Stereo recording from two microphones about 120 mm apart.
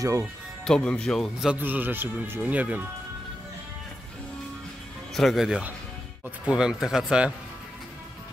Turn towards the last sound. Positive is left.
turn(degrees=-5)  # may be behind; listen again after turning